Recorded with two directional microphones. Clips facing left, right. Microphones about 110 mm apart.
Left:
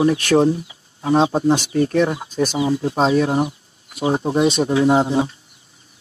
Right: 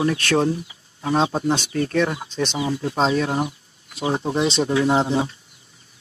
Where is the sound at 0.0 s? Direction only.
20° left (ahead or behind).